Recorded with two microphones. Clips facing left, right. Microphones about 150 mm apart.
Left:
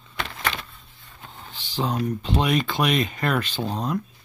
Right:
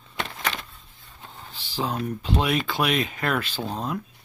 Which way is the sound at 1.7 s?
5° right (ahead or behind).